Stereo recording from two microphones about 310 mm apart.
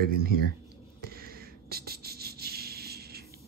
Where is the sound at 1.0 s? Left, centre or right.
Right.